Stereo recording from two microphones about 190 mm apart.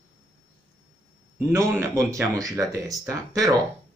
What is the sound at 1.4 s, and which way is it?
Speech, 15° right (ahead or behind).